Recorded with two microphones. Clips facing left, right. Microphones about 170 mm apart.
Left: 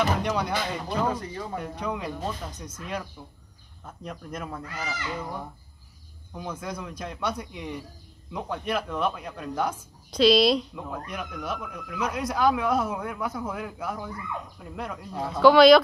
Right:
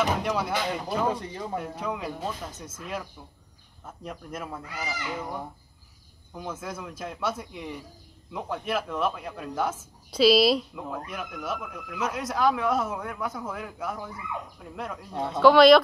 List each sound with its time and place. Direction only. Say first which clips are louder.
0.0 s speech: left 1 dB; centre (ahead or behind)
1.2 s speech: even; 25° right (ahead or behind)
1.5 s speech: even; 5° right (ahead or behind)